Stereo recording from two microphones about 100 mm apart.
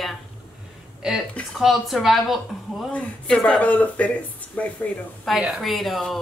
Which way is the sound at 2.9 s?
10° left (ahead or behind).